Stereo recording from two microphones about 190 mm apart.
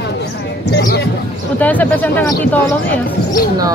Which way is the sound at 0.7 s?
60° left (ahead or behind).